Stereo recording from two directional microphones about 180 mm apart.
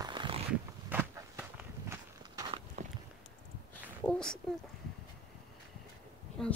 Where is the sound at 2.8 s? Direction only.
40° right (ahead or behind).